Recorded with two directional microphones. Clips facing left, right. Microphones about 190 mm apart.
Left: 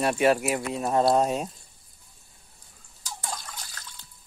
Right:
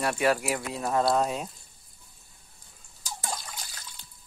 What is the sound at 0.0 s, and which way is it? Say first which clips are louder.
Speech: left 4 dB; 25° left (ahead or behind).